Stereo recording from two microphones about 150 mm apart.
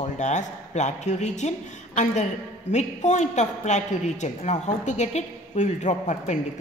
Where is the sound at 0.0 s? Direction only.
50° left (ahead or behind).